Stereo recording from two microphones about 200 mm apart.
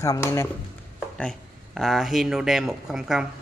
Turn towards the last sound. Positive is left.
turn(degrees=0)  # may be behind; listen again after turning